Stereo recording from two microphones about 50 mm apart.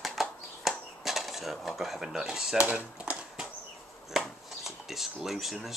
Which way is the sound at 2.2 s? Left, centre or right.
Centre.